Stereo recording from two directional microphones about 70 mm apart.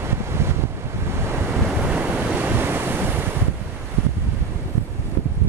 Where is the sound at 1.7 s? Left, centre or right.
Centre.